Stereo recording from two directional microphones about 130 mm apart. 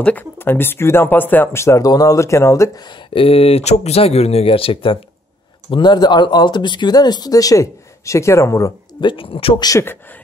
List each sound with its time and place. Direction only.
0.0 s speech: 15° left (ahead or behind); by 4.9 s 45° left (ahead or behind)
5.7 s speech: 35° left (ahead or behind)
9.0 s speech: 45° left (ahead or behind)
9.6 s speech: 30° left (ahead or behind)